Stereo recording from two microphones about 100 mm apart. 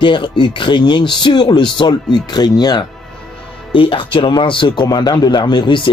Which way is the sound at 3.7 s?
60° left (ahead or behind).